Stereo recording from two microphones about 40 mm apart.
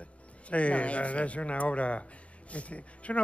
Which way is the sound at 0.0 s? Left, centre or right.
Left.